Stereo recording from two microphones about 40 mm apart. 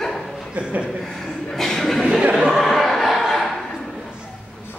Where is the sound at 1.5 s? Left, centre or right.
Centre.